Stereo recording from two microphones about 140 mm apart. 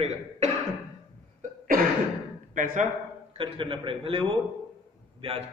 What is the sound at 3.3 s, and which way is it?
A man's voice, 40° right (ahead or behind).